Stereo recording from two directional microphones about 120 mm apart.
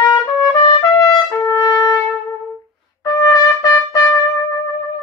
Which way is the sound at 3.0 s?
30° left (ahead or behind).